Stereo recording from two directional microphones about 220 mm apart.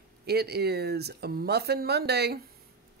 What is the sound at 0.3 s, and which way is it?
A woman's voice, 45° right (ahead or behind).